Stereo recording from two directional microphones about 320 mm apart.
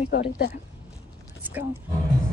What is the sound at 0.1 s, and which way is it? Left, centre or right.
Speech, left.